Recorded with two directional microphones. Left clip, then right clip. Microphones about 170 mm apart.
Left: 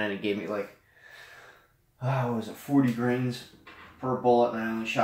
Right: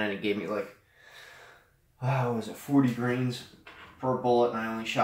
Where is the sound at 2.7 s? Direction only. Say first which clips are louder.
Even; centre (ahead or behind).